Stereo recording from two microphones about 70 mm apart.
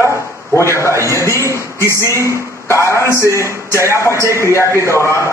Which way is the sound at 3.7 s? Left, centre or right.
Right.